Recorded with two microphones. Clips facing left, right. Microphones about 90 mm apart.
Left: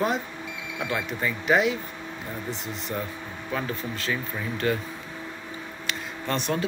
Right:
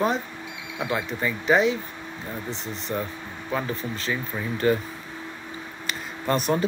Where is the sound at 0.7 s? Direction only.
5° right (ahead or behind).